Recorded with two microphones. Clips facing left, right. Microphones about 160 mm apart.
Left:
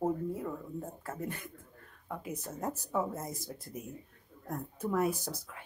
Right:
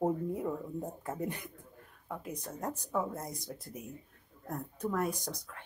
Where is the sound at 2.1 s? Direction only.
Centre (ahead or behind).